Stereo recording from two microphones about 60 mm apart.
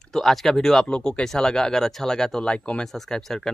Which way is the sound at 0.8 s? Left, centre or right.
Centre.